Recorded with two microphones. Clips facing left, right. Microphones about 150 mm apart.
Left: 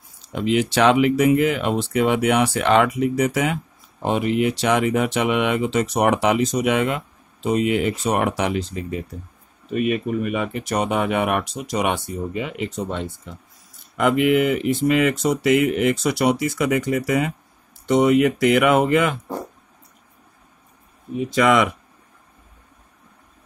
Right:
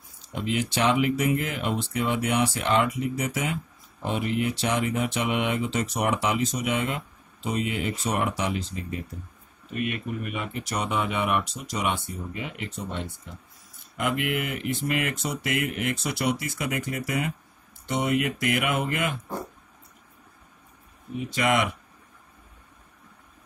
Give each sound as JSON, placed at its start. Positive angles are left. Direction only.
{"t": 0.2, "sound": "speech", "side_deg": 90}
{"t": 4.0, "sound": "speech", "side_deg": 90}
{"t": 9.8, "sound": "speech", "side_deg": 85}